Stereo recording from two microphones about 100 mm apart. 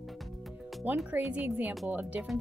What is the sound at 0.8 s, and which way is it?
Speech, 15° right (ahead or behind).